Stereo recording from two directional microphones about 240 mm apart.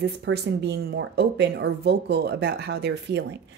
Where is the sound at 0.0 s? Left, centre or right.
Right.